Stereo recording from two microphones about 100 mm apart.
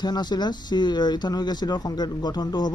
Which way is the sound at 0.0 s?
45° left (ahead or behind).